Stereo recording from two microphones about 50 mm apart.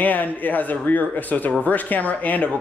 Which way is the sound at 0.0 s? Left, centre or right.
Left.